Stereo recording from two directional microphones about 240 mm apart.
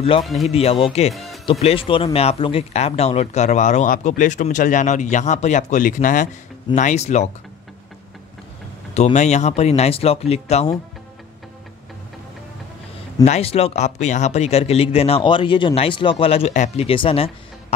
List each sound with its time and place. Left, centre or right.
0.2 s speech: centre
0.5 s speech: left
1.1 s music: centre
1.4 s speech: left
8.9 s speech: left
13.2 s speech: left